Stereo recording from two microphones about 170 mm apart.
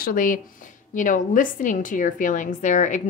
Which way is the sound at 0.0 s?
55° left (ahead or behind).